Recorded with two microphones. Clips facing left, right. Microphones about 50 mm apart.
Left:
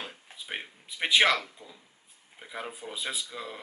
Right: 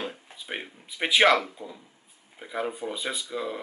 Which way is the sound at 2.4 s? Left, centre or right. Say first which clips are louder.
Right 8 dB; centre.